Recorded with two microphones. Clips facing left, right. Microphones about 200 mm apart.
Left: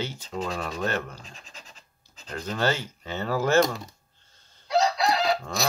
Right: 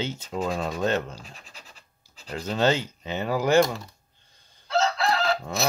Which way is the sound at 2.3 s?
15° right (ahead or behind).